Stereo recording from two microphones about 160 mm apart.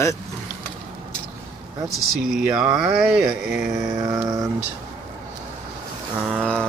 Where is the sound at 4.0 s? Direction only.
25° right (ahead or behind).